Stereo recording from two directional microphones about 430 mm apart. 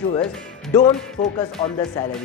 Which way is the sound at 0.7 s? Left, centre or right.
Centre.